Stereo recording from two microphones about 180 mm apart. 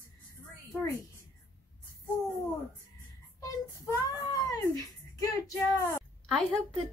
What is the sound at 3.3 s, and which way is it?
Child singing, 20° left (ahead or behind).